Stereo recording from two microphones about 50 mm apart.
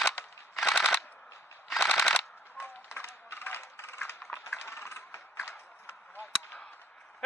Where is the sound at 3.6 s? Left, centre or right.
Left.